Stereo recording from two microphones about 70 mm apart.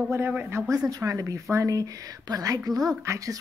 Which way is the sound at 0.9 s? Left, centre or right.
Right.